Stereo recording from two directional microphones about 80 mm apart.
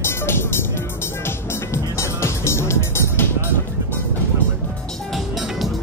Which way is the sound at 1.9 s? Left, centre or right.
Left.